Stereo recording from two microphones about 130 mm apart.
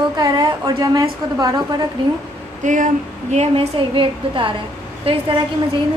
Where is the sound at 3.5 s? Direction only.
45° right (ahead or behind).